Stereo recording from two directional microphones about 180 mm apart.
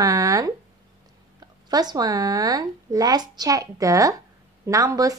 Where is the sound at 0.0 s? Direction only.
20° right (ahead or behind).